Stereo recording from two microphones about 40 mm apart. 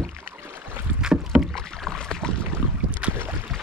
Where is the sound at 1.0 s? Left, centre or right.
Centre.